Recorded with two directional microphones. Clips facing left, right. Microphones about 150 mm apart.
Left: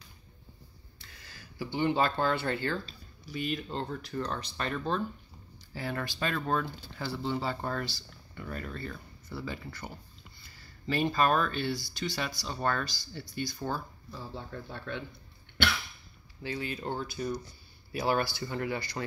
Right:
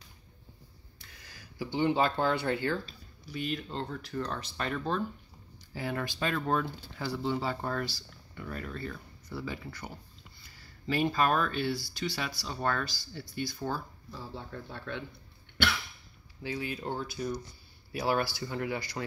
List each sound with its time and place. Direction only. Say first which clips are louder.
0.9 s speech: left 1 dB; 15° right (ahead or behind)
3.3 s speech: left 1 dB; 5° left (ahead or behind)
16.4 s speech: even; 10° right (ahead or behind)